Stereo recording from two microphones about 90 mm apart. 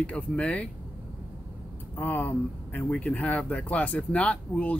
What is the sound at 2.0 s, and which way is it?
Speech, 20° left (ahead or behind).